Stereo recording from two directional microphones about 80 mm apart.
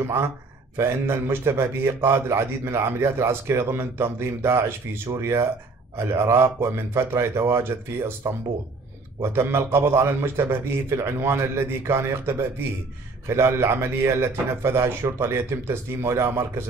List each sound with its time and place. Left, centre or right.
0.0 s a man's voice: right
9.2 s a man's voice: right